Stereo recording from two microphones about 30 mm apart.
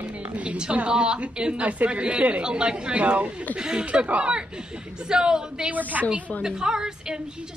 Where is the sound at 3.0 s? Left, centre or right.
Right.